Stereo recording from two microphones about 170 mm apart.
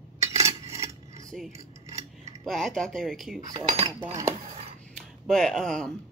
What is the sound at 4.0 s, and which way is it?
Speech, 20° right (ahead or behind).